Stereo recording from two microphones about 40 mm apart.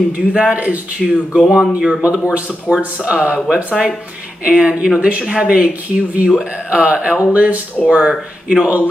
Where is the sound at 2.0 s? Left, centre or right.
Right.